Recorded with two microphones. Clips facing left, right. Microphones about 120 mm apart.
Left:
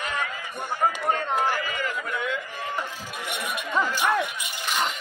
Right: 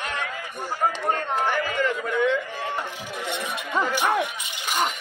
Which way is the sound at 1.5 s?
55° right (ahead or behind).